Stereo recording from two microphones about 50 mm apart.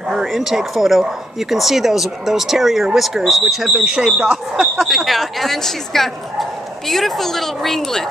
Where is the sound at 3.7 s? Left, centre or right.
Centre.